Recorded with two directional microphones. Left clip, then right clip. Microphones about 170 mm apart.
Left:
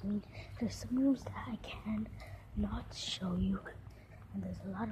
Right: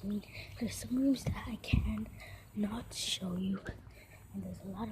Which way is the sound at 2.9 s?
20° right (ahead or behind).